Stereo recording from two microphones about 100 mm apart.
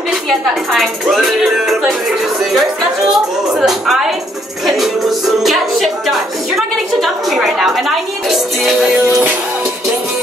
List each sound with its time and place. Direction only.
0.7 s speech: centre (ahead or behind)
3.1 s speech: 5° right (ahead or behind)
4.6 s music: centre (ahead or behind)